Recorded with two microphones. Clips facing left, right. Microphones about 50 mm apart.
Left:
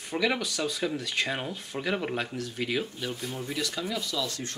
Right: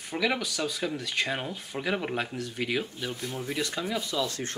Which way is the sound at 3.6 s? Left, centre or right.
Centre.